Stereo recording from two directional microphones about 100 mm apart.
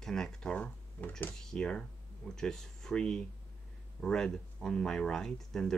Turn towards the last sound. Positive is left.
turn(degrees=5)  # may be behind; listen again after turning